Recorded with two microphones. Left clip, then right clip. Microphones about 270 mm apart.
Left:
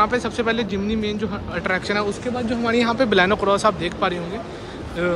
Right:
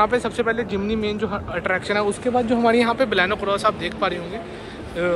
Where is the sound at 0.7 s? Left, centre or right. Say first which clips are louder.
Right 1 dB; left.